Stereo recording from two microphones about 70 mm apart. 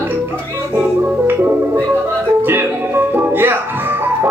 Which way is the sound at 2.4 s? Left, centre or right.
Right.